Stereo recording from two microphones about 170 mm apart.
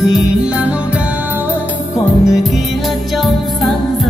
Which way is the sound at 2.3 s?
Centre (ahead or behind).